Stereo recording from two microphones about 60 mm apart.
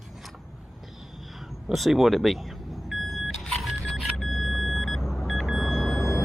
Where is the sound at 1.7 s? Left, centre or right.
Centre.